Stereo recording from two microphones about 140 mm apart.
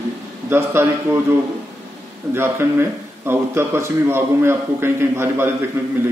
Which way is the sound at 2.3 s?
15° right (ahead or behind).